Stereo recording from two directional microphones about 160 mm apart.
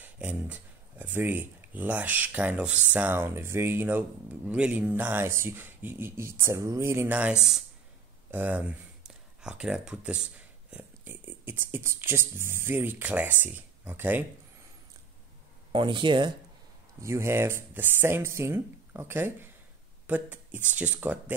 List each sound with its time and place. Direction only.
0.0 s speech: 10° right (ahead or behind)
15.7 s speech: 30° right (ahead or behind)
17.0 s speech: 15° right (ahead or behind)